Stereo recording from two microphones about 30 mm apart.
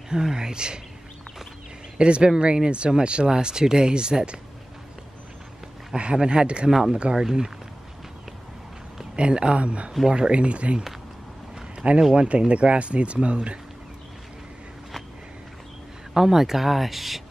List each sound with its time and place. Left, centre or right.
0.1 s speech: right
2.0 s speech: right
3.3 s speech: right
6.2 s speech: right
6.7 s speech: right
9.1 s speech: right
10.0 s speech: right
10.3 s speech: right
11.7 s a sound: right
12.2 s speech: right
16.1 s speech: centre